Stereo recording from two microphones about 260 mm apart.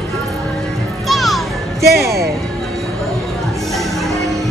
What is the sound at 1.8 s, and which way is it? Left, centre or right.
Speech, right.